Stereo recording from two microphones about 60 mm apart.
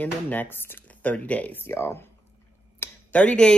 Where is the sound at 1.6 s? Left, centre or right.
Left.